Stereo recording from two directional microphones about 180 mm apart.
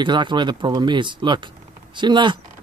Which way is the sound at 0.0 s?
25° right (ahead or behind).